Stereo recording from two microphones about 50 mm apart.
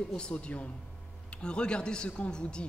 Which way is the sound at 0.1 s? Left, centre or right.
Left.